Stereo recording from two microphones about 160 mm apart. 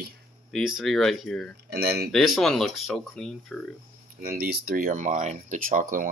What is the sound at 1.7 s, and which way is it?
Speech, 80° right.